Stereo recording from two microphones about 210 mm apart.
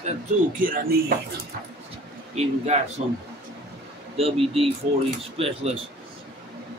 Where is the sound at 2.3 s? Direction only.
30° right (ahead or behind).